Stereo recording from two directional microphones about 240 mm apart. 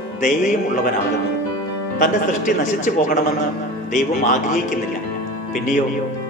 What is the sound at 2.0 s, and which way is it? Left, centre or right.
A man's voice, left.